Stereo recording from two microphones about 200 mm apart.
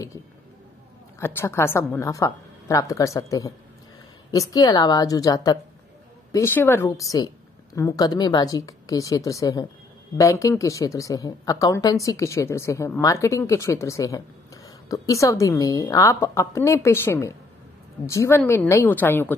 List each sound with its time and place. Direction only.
1.2 s a woman's voice: 10° left (ahead or behind)